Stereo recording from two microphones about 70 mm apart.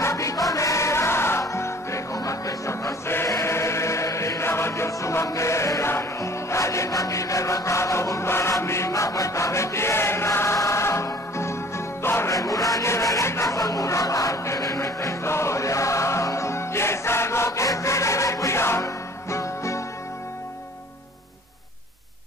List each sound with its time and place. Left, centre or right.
0.0 s music: left
12.3 s a sound: left
12.8 s rub: left
13.6 s music: left